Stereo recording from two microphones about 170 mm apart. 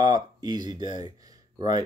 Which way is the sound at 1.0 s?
20° right (ahead or behind).